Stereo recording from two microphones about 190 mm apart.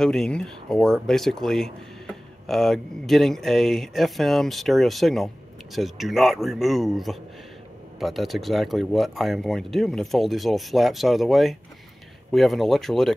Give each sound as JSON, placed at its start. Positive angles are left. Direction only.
{"t": 0.0, "sound": "speech", "side_deg": 5}